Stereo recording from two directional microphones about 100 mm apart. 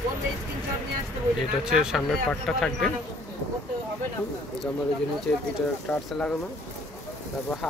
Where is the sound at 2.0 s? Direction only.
5° left (ahead or behind).